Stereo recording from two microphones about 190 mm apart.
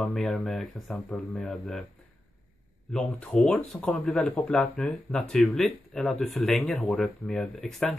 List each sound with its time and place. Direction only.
0.0 s speech: centre (ahead or behind)
2.9 s speech: 5° left (ahead or behind)